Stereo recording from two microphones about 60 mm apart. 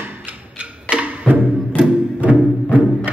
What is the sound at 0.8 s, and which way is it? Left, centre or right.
Music, centre.